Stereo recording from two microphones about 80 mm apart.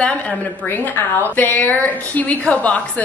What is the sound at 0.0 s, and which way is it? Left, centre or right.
A woman's voice, centre.